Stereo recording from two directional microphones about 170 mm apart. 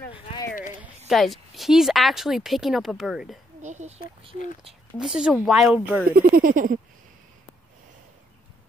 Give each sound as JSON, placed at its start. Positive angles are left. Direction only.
{"t": 0.1, "sound": "a sound", "side_deg": 30}
{"t": 0.5, "sound": "a sound", "side_deg": 50}
{"t": 0.7, "sound": "a woman's voice", "side_deg": 0}
{"t": 3.6, "sound": "speech", "side_deg": -45}
{"t": 5.0, "sound": "speech", "side_deg": -5}
{"t": 6.0, "sound": "speech", "side_deg": -60}